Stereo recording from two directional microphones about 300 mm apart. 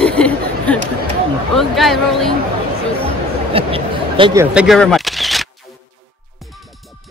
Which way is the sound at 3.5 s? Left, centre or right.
Centre.